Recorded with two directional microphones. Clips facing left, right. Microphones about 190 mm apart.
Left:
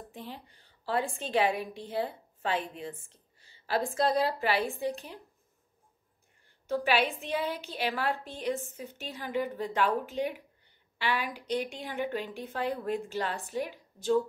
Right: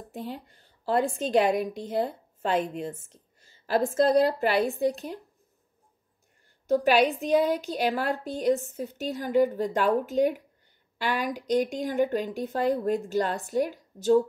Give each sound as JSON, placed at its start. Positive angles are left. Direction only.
{"t": 0.1, "sound": "a woman's voice", "side_deg": -45}
{"t": 6.7, "sound": "a woman's voice", "side_deg": -45}